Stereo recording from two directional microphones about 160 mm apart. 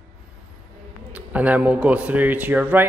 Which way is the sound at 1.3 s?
10° right (ahead or behind).